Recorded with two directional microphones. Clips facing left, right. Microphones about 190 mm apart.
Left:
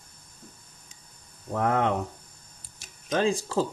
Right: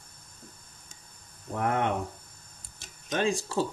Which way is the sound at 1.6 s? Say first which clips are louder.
Left 3 dB; 30° left (ahead or behind).